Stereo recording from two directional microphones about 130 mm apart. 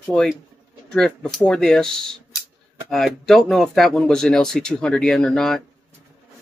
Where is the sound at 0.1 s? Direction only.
5° left (ahead or behind).